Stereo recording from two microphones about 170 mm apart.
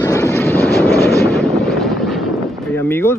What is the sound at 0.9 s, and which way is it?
Vehicle, 65° left (ahead or behind).